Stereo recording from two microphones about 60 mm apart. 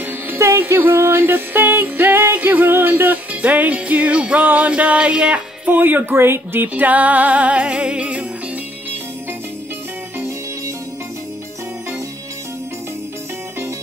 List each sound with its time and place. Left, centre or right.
0.4 s music: right
5.7 s speech: right
6.7 s music: right